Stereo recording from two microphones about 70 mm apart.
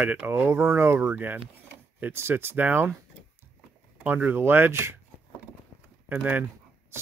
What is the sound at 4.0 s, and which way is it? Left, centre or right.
Speech, right.